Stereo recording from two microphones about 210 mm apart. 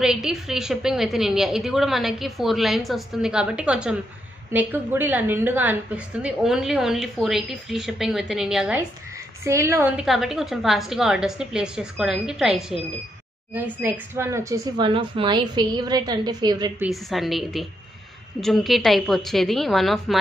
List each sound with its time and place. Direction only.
0.0 s a woman's voice: 5° right (ahead or behind)
10.0 s a woman's voice: centre (ahead or behind); by 16.7 s 20° right (ahead or behind)
16.8 s a woman's voice: centre (ahead or behind)